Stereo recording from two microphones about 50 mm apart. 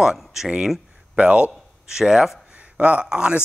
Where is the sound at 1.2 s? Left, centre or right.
Right.